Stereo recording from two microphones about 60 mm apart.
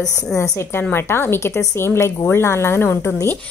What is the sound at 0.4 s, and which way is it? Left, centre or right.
A woman's voice, left.